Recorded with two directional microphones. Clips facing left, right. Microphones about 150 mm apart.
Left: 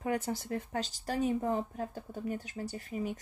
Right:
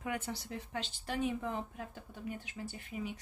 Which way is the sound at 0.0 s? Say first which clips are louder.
Left 6 dB; 35° left (ahead or behind).